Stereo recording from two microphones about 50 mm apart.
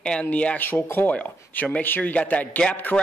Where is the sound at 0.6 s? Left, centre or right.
Left.